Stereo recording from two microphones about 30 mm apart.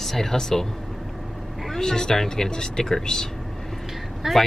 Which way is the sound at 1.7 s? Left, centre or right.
Centre.